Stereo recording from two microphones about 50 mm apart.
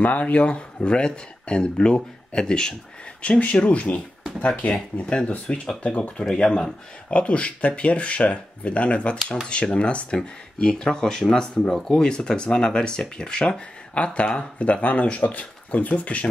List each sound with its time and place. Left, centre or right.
0.0 s speech: left
3.2 s speech: left